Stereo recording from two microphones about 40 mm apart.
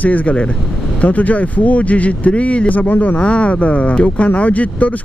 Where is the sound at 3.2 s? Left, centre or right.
Left.